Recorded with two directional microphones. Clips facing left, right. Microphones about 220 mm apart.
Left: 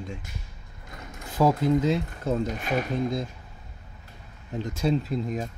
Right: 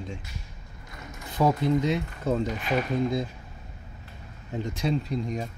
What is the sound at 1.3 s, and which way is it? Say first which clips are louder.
Speech: left 2 dB; 5° left (ahead or behind).